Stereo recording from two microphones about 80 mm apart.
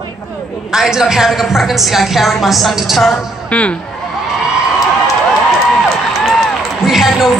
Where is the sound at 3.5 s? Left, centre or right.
Centre.